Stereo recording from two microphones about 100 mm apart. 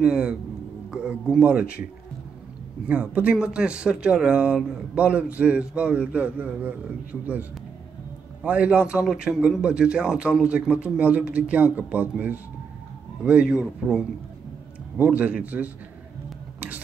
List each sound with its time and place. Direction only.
0.0 s speech: 10° right (ahead or behind)
2.9 s speech: 15° right (ahead or behind)
16.5 s whispering: 15° right (ahead or behind)